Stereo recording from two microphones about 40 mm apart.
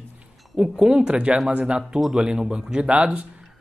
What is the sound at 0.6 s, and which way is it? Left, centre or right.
Speech, right.